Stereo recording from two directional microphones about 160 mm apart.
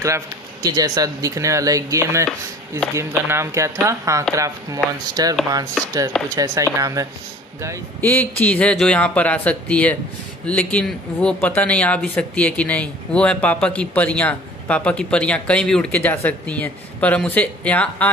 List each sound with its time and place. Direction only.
0.0 s speech: 20° right (ahead or behind)
8.0 s speech: 10° left (ahead or behind)